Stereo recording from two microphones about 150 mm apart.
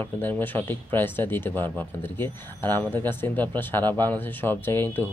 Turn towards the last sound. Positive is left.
turn(degrees=15)  # may be behind; listen again after turning